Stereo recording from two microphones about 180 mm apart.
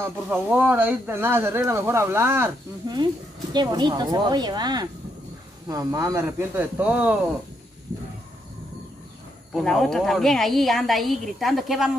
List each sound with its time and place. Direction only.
0.0 s speech: 10° right (ahead or behind)
9.5 s a woman's voice: centre (ahead or behind)